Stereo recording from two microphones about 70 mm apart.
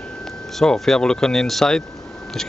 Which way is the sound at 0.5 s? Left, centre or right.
Centre.